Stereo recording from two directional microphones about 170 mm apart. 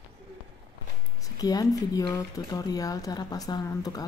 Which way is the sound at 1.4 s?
20° left (ahead or behind).